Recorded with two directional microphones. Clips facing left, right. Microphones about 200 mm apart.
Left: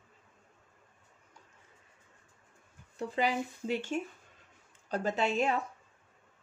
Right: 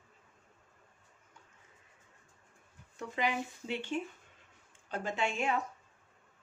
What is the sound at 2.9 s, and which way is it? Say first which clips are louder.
Speech: left 3 dB; 35° left (ahead or behind).